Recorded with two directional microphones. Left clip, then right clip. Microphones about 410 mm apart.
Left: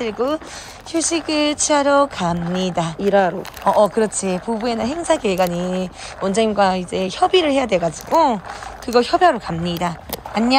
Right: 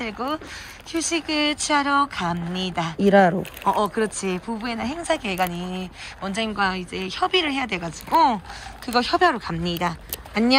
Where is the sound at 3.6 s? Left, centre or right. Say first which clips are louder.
Left 7 dB; centre.